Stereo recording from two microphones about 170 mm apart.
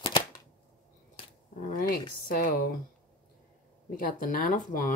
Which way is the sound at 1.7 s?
55° left (ahead or behind).